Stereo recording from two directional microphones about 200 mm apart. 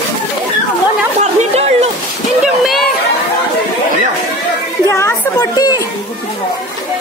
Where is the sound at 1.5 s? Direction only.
30° right (ahead or behind).